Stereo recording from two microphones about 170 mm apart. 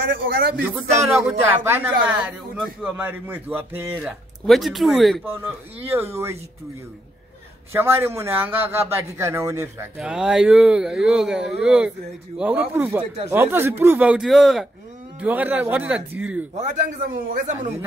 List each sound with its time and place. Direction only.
0.1 s a man's voice: 60° right (ahead or behind)
0.6 s speech: 10° right (ahead or behind)
2.5 s speech: centre (ahead or behind)
3.0 s speech: 10° right (ahead or behind)
5.2 s speech: 10° right (ahead or behind)
7.7 s speech: 15° right (ahead or behind)
9.9 s speech: 5° right (ahead or behind)
16.5 s a man's voice: 45° right (ahead or behind)